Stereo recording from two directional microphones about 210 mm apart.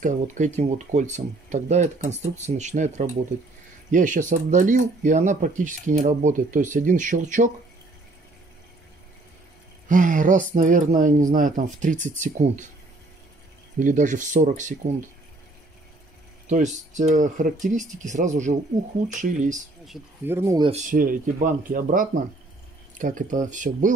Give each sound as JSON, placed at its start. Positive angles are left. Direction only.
{"t": 0.0, "sound": "speech", "side_deg": -35}
{"t": 9.8, "sound": "speech", "side_deg": -40}
{"t": 13.7, "sound": "speech", "side_deg": -40}
{"t": 16.4, "sound": "speech", "side_deg": -35}
{"t": 19.9, "sound": "speech", "side_deg": -10}
{"t": 20.7, "sound": "speech", "side_deg": -40}